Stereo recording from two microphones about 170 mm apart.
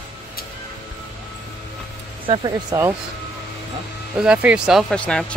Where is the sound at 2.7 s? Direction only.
20° right (ahead or behind).